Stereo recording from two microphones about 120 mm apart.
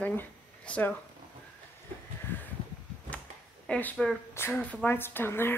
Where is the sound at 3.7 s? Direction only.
10° left (ahead or behind).